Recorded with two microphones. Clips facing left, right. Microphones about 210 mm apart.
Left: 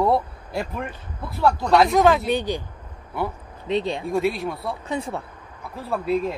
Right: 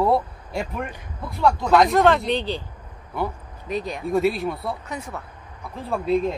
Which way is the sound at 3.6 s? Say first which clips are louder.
Left 4 dB; 25° left (ahead or behind).